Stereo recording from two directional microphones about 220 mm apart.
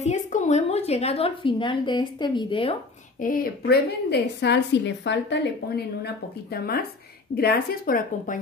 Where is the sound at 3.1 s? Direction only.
40° left (ahead or behind).